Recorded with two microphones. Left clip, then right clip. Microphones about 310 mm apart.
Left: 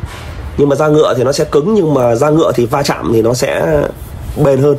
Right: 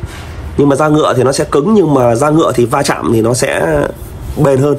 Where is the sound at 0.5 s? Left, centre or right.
Right.